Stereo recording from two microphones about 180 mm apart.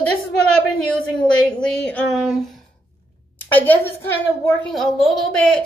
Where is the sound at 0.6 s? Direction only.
5° left (ahead or behind).